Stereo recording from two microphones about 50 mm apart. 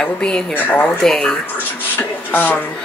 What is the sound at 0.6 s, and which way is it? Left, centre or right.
Speech, left.